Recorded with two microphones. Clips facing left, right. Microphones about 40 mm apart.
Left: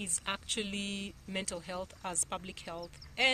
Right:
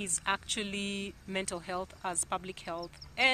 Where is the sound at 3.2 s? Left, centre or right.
Right.